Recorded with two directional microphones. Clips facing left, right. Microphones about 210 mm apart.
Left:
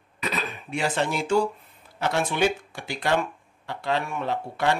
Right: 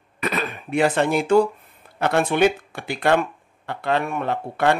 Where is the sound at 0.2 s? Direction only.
55° right (ahead or behind).